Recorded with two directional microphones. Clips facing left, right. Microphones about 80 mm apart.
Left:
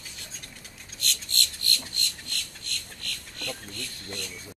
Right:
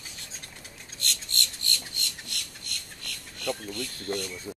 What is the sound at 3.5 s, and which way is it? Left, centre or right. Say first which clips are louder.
Speech: right 9 dB; right.